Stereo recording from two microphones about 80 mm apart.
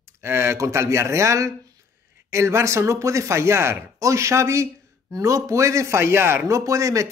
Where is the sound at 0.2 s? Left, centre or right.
Right.